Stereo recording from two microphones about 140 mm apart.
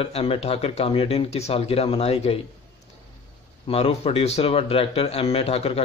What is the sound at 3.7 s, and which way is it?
A man's voice, 45° left (ahead or behind).